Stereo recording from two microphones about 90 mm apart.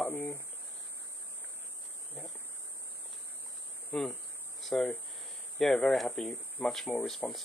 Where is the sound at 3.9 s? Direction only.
10° left (ahead or behind).